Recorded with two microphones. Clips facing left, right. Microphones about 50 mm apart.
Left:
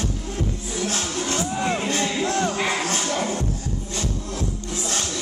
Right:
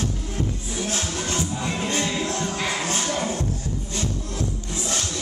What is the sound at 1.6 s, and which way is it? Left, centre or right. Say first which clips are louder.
Music: left 3 dB; centre.